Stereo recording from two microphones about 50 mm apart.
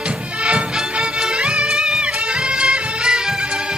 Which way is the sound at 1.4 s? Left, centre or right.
Right.